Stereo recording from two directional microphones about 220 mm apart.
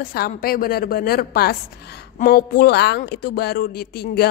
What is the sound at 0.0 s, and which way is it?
Speech, 45° left (ahead or behind).